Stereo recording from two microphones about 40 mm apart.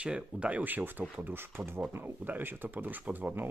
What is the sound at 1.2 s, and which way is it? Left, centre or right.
Speech, right.